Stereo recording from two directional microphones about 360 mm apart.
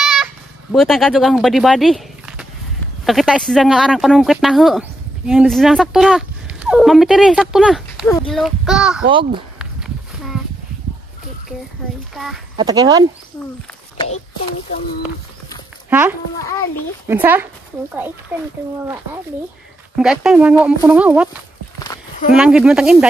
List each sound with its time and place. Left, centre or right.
0.0 s a sound: centre
3.1 s speech: centre
9.6 s a sound: centre
12.2 s speech: centre
12.5 s speech: centre
13.9 s speech: centre
15.9 s speech: centre
20.0 s speech: centre
21.7 s a sound: centre
22.3 s speech: centre